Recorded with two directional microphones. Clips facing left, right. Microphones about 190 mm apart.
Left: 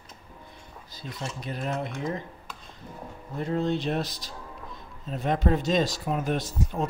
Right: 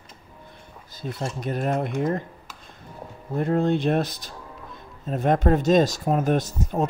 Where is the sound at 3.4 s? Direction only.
55° right (ahead or behind).